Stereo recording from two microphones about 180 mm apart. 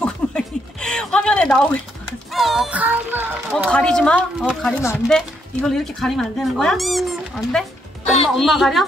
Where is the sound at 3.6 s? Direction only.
5° left (ahead or behind).